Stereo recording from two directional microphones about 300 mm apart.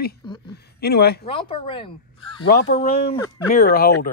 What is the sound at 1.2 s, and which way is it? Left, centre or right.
A woman's voice, centre.